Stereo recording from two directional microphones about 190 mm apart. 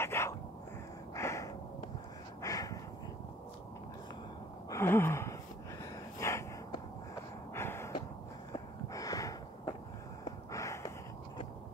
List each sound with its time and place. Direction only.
0.0 s dog: 15° left (ahead or behind)
1.1 s gasp: 15° left (ahead or behind)
2.4 s a sound: 20° left (ahead or behind)
4.6 s gasp: 15° left (ahead or behind)
6.1 s snort: 15° left (ahead or behind)
7.5 s a sound: 15° left (ahead or behind)